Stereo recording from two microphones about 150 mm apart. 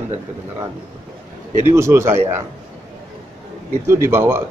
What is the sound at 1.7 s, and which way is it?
Speech, 15° right (ahead or behind).